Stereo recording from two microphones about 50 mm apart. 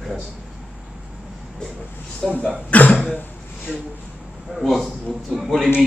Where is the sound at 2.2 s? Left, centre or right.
Centre.